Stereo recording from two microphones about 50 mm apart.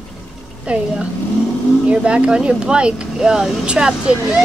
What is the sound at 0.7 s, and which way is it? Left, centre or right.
Speech, right.